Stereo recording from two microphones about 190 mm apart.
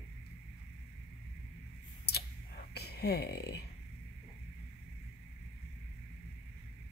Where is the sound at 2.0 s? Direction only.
60° left (ahead or behind).